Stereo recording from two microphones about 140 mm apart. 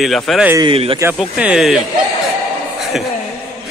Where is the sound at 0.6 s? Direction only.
40° right (ahead or behind).